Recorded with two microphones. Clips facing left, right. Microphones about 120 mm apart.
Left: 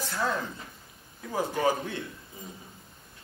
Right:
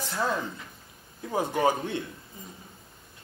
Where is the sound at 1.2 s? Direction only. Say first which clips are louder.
Right 2 dB; 25° right (ahead or behind).